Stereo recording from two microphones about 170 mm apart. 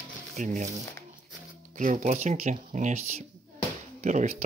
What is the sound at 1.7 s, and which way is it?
Speech, 45° right (ahead or behind).